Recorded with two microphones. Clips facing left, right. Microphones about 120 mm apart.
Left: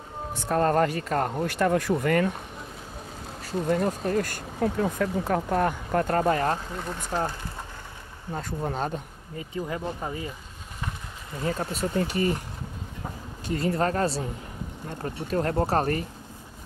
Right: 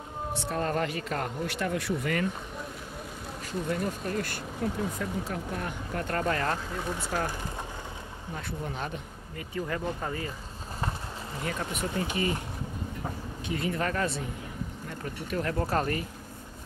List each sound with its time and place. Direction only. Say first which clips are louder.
0.3 s speech: left 7 dB; 45° left (ahead or behind)
3.6 s speech: left 7 dB; 50° left (ahead or behind)
4.6 s speech: left 6 dB; 75° left (ahead or behind)
4.9 s speech: left 7 dB; 65° left (ahead or behind); by 6.1 s 45° left (ahead or behind)
6.1 s speech: left 3 dB; 30° left (ahead or behind)
8.4 s speech: left 6 dB; 40° left (ahead or behind)
9.4 s speech: left 1 dB; 20° left (ahead or behind)
11.4 s speech: left 5 dB; 30° left (ahead or behind)
12.0 s speech: left 5 dB; 40° left (ahead or behind)
13.5 s speech: left 5 dB; 35° left (ahead or behind)